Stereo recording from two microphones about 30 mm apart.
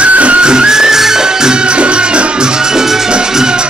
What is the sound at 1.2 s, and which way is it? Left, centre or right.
Music, right.